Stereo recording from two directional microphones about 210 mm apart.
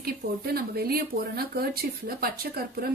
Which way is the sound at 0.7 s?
45° right (ahead or behind).